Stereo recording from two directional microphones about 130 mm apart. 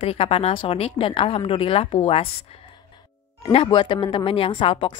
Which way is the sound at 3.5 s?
45° left (ahead or behind).